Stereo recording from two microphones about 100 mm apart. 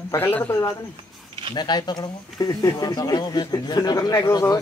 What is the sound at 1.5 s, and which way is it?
Speech, 45° left (ahead or behind).